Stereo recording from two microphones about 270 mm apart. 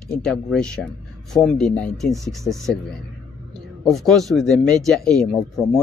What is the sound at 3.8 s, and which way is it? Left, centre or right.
Speech, centre.